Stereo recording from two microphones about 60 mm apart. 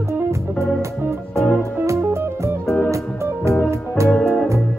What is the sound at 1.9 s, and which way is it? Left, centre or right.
Music, right.